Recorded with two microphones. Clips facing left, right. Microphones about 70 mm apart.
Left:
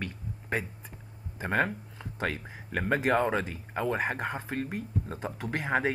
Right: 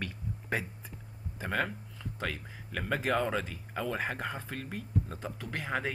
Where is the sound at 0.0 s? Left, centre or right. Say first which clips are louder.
Left 1 dB; centre.